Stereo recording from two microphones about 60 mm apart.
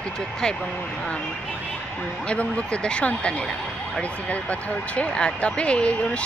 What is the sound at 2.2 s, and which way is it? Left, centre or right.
Speech, centre.